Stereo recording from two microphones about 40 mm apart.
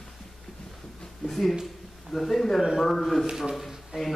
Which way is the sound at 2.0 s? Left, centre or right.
Centre.